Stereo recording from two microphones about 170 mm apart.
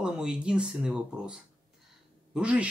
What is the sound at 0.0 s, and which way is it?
Speech, 5° right (ahead or behind).